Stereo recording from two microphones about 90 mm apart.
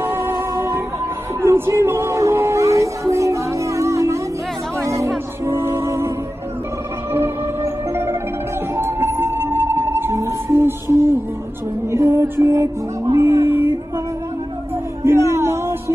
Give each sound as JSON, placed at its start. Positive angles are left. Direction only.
{"t": 0.0, "sound": "music", "side_deg": -30}
{"t": 7.1, "sound": "marimba", "side_deg": -25}
{"t": 8.7, "sound": "music", "side_deg": -25}
{"t": 15.0, "sound": "music", "side_deg": -30}